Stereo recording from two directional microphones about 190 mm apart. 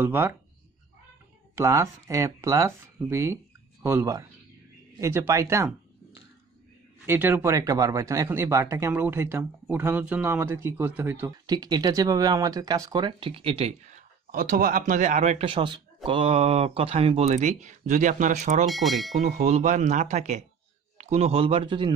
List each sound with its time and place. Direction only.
0.0 s speech: 10° right (ahead or behind)
1.5 s speech: 15° right (ahead or behind)
7.1 s speech: 10° right (ahead or behind)
11.4 s speech: 20° right (ahead or behind); by 18.7 s 35° right (ahead or behind)
18.7 s speech: centre (ahead or behind)
19.2 s speech: 35° right (ahead or behind)